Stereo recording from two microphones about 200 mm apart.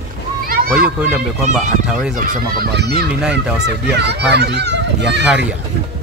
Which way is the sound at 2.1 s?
45° right (ahead or behind).